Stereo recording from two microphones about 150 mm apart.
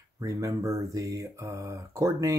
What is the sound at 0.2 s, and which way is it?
Speech, 20° right (ahead or behind).